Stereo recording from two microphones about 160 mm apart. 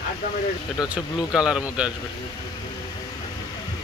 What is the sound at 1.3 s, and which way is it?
Speech, 5° right (ahead or behind).